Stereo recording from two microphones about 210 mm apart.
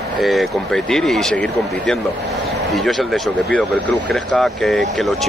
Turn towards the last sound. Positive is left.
turn(degrees=0)  # may be behind; listen again after turning